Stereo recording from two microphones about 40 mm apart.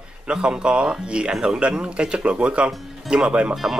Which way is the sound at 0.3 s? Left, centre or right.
Centre.